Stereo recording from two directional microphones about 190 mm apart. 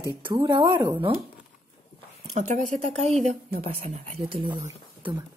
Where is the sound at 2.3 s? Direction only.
40° right (ahead or behind).